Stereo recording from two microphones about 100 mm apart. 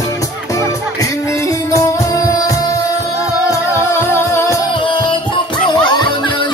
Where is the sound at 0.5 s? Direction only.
30° left (ahead or behind).